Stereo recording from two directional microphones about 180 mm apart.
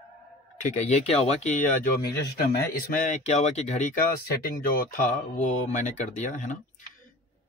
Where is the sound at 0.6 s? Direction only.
40° left (ahead or behind).